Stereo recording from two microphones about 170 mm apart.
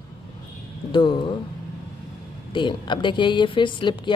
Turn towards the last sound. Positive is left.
turn(degrees=30)  # may be behind; listen again after turning